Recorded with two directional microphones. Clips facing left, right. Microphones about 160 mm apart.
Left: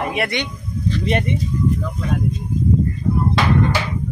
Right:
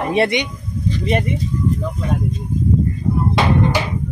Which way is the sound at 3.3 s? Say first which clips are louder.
Right 3 dB; 20° right (ahead or behind).